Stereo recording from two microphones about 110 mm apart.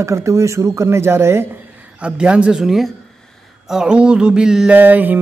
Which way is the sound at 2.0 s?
10° right (ahead or behind).